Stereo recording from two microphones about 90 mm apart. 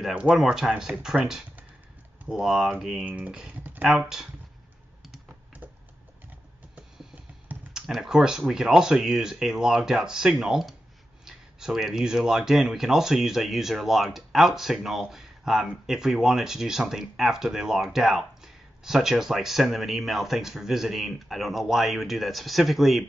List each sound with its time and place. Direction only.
0.0 s speech: 10° right (ahead or behind)
7.7 s speech: 5° right (ahead or behind)